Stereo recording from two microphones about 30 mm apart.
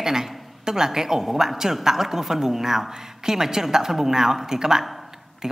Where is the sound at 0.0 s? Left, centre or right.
Centre.